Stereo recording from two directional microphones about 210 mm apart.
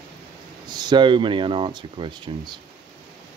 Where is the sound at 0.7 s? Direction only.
20° right (ahead or behind).